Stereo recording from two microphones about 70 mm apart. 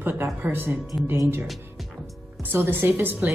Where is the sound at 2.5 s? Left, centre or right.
Right.